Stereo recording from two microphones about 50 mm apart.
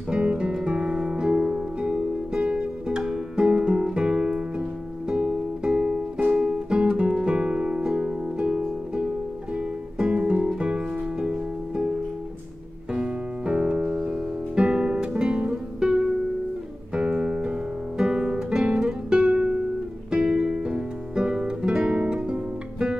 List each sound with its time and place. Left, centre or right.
0.1 s guitar: right
0.7 s music: right
12.9 s music: right
16.9 s guitar: centre
20.1 s music: centre